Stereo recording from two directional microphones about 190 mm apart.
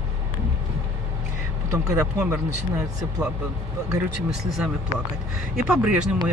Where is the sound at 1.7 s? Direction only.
15° right (ahead or behind).